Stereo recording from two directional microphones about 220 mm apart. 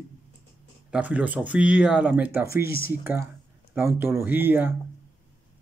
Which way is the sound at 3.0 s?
10° right (ahead or behind).